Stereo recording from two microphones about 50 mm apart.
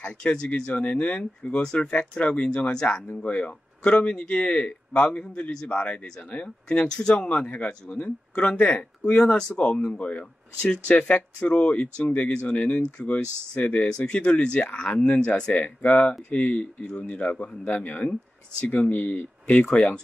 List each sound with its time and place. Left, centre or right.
0.0 s speech: left
3.1 s speech: left
7.4 s speech: left; by 9.8 s centre
9.8 s speech: left